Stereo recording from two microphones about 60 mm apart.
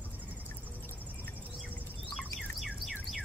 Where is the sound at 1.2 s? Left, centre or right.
Left.